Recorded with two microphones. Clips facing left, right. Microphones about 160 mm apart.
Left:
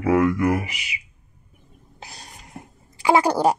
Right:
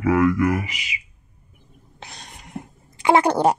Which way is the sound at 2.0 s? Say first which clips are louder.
Right 1 dB; 35° left (ahead or behind).